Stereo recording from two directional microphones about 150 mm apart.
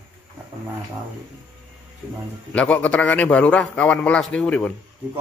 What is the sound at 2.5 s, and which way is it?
A man's voice, 10° left (ahead or behind).